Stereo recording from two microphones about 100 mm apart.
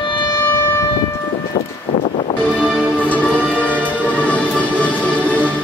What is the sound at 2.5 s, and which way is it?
Music, 5° right (ahead or behind).